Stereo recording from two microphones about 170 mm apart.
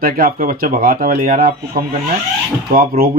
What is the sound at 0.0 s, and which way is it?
Speech, 60° right (ahead or behind).